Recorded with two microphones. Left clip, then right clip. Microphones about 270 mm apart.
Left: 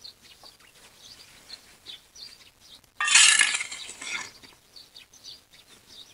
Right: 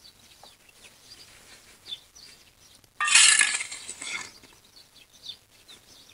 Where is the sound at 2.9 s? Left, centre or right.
Centre.